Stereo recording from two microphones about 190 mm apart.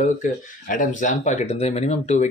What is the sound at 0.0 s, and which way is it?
Speech, 45° left (ahead or behind).